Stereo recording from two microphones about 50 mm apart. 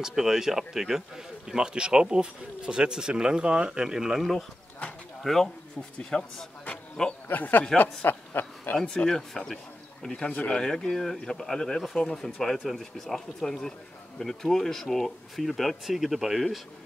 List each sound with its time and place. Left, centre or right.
0.0 s a man's voice: centre
7.2 s speech: left
8.0 s a sound: left
8.7 s speech: centre